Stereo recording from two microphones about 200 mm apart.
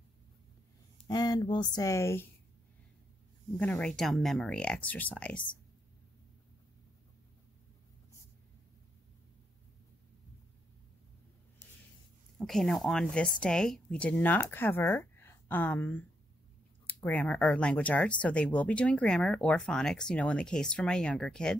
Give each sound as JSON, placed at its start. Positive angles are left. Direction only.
{"t": 1.0, "sound": "speech", "side_deg": 20}
{"t": 3.5, "sound": "speech", "side_deg": 5}
{"t": 12.4, "sound": "a woman's voice", "side_deg": 0}